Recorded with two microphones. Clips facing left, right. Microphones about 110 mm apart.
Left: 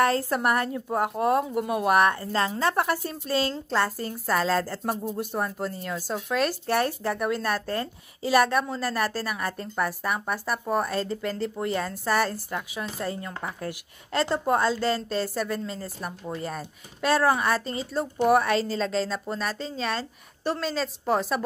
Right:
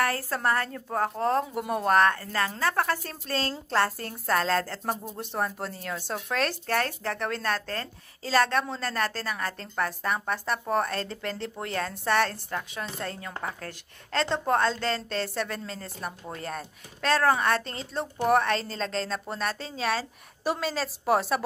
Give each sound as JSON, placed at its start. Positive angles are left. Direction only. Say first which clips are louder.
{"t": 0.0, "sound": "a woman's voice", "louder": "left 4 dB", "side_deg": 20}
{"t": 1.4, "sound": "a woman's voice", "louder": "left 3 dB", "side_deg": 0}
{"t": 2.0, "sound": "a woman's voice", "louder": "left 1 dB", "side_deg": 20}
{"t": 6.7, "sound": "a woman's voice", "louder": "left 3 dB", "side_deg": 15}